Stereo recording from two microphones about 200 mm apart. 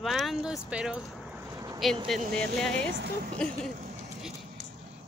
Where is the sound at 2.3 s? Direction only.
Centre (ahead or behind).